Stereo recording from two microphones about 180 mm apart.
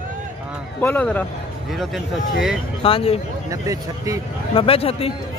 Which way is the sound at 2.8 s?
30° left (ahead or behind).